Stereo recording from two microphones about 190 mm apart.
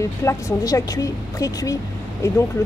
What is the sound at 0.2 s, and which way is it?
Speech, 15° left (ahead or behind).